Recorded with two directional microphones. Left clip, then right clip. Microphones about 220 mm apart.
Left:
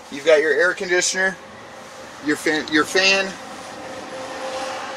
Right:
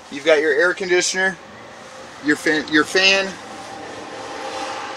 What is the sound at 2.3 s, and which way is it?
Speech, 35° right (ahead or behind).